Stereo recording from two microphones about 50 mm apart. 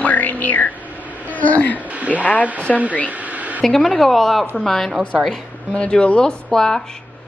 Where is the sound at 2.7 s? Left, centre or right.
Centre.